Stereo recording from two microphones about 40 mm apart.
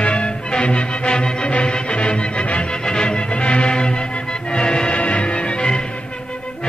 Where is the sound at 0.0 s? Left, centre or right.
Left.